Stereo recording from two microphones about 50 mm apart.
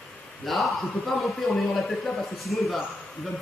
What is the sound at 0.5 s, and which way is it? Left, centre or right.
A man's voice, centre.